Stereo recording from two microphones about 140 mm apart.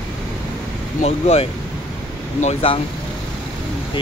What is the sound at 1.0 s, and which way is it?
Speech, 50° left (ahead or behind).